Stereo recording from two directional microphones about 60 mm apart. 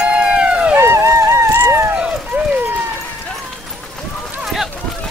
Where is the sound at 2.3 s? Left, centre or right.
Right.